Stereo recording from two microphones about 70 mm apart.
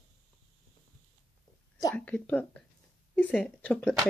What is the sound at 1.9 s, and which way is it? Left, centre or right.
Speech, centre.